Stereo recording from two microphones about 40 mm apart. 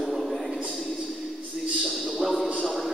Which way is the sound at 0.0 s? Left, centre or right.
Centre.